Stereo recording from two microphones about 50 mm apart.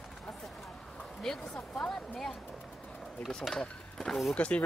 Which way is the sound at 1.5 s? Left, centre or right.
Left.